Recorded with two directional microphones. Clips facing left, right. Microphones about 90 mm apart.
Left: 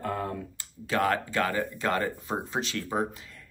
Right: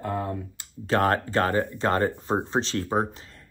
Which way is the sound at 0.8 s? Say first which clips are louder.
Right 4 dB; 40° right (ahead or behind).